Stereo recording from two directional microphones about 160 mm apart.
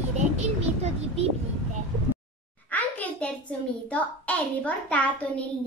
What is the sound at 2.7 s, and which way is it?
A child's voice, 10° left (ahead or behind).